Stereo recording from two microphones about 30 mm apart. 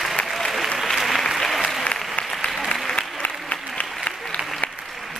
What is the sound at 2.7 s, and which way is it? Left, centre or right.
Applause, left.